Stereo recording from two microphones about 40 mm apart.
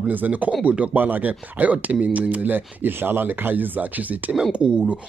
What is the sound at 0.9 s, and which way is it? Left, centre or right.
Speech, right.